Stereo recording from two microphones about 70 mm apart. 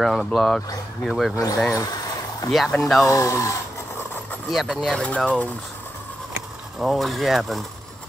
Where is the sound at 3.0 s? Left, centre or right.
Left.